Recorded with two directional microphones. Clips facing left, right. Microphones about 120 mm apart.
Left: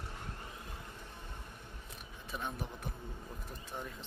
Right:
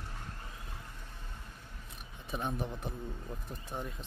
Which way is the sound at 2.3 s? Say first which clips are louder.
Right 5 dB; 20° right (ahead or behind).